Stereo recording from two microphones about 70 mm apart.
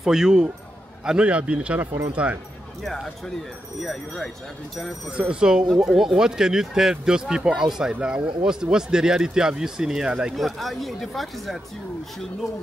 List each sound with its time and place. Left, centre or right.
0.0 s a man's voice: centre
2.8 s speech: centre
5.1 s a man's voice: centre
10.3 s speech: centre